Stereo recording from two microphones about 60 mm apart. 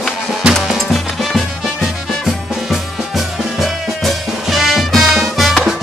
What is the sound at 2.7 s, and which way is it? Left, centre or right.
Music, centre.